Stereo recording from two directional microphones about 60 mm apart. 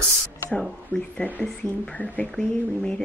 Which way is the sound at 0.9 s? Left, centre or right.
Left.